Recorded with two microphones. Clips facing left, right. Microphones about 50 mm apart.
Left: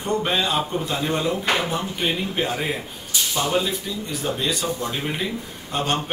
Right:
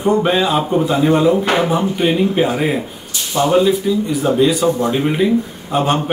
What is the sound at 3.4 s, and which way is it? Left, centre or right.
Speech, right.